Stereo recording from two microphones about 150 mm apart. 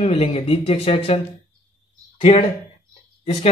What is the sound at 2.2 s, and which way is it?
Speech, 45° left (ahead or behind).